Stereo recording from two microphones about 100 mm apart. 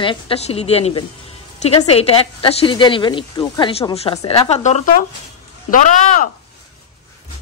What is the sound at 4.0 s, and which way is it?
Speech, 80° left.